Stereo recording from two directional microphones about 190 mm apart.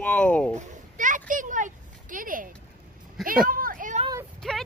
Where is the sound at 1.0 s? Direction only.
45° right (ahead or behind).